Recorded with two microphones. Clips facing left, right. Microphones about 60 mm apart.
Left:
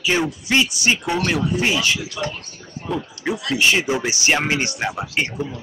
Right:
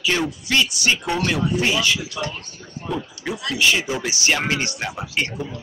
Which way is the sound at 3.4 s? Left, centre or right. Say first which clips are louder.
Left 1 dB; left.